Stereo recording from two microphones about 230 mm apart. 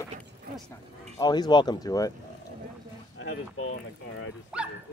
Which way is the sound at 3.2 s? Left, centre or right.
Left.